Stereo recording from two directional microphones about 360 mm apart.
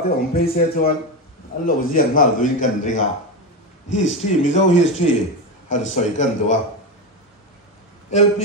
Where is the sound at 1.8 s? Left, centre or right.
Left.